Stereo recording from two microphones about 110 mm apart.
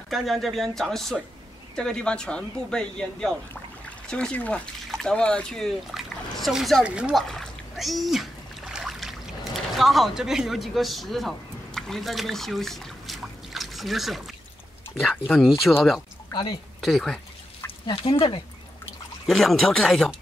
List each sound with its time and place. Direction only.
0.1 s speech: centre (ahead or behind)
7.2 s splash: centre (ahead or behind)
15.7 s speech: 10° left (ahead or behind)
16.3 s a sound: 40° left (ahead or behind)
16.8 s speech: 5° left (ahead or behind)
17.8 s speech: 50° left (ahead or behind)
19.2 s speech: 5° left (ahead or behind)